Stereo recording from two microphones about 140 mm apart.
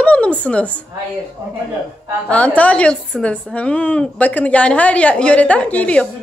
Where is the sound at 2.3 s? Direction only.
10° left (ahead or behind).